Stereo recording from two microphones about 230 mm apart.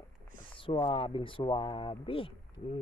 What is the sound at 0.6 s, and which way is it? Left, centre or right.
Speech, left.